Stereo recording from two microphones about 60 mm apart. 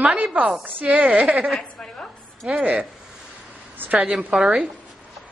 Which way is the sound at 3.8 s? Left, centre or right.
Right.